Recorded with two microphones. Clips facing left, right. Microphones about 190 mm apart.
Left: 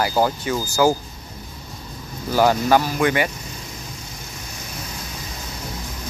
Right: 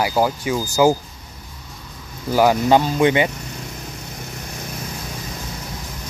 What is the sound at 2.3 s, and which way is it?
Speech, 15° right (ahead or behind).